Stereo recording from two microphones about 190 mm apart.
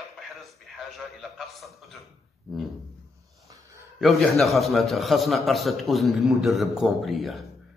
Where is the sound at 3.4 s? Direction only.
15° right (ahead or behind).